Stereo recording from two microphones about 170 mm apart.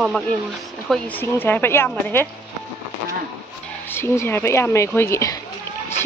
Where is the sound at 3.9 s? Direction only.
15° left (ahead or behind).